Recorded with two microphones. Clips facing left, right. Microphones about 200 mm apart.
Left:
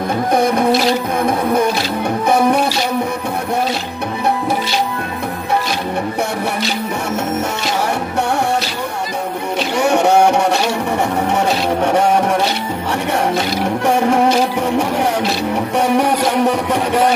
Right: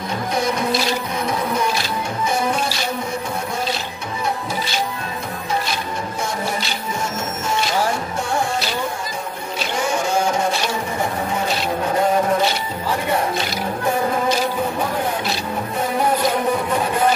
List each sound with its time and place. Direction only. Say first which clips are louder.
0.3 s printer: left 7 dB; 55° left (ahead or behind)
2.2 s music: left 8 dB; 60° left (ahead or behind)
7.4 s music: left 2 dB; 70° left (ahead or behind)
9.8 s music: left 8 dB; 70° left (ahead or behind)
13.8 s music: left 6 dB; 80° left